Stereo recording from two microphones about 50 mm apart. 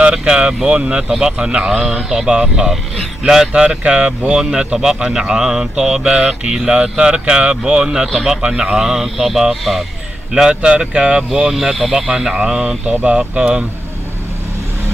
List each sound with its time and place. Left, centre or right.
0.0 s mantra: centre
3.3 s speech: centre
4.3 s mantra: centre
8.4 s mantra: centre
10.3 s speech: centre
11.5 s speech: centre
11.9 s mantra: centre